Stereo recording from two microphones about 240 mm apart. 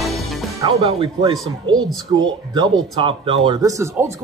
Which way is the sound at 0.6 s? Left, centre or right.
Right.